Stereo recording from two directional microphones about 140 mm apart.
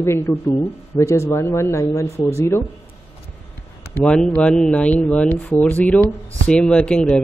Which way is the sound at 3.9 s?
5° left (ahead or behind).